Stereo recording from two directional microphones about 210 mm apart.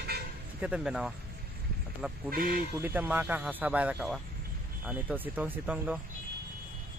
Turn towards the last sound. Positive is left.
turn(degrees=-5)  # may be behind; listen again after turning